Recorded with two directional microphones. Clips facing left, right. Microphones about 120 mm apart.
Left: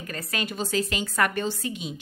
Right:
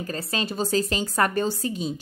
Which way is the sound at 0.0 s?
30° right (ahead or behind).